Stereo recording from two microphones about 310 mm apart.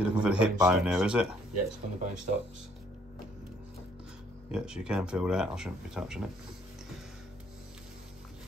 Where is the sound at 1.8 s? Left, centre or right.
Right.